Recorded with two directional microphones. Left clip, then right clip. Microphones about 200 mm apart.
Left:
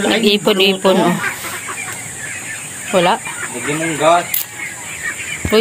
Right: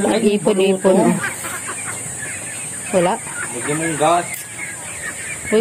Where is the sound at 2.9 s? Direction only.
10° left (ahead or behind).